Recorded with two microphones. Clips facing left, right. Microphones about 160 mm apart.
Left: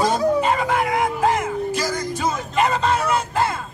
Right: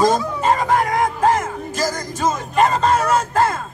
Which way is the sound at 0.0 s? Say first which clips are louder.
Right 1 dB; 40° right (ahead or behind).